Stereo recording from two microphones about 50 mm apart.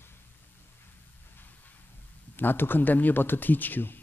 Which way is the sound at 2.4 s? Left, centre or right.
Left.